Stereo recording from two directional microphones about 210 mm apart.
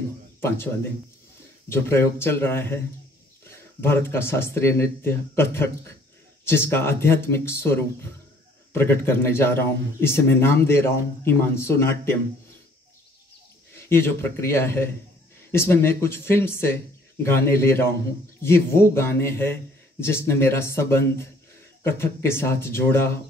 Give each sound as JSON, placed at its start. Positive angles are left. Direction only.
{"t": 0.4, "sound": "speech", "side_deg": 10}
{"t": 1.7, "sound": "speech", "side_deg": 10}
{"t": 13.8, "sound": "speech", "side_deg": 10}